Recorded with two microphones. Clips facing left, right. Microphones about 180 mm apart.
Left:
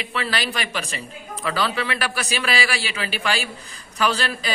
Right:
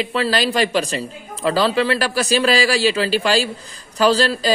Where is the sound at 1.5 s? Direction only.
35° right (ahead or behind).